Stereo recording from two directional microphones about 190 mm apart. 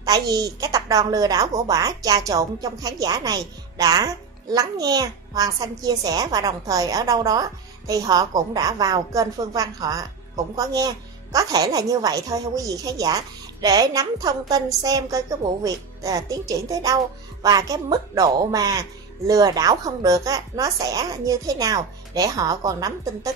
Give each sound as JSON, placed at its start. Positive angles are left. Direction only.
{"t": 0.0, "sound": "a child's voice", "side_deg": -20}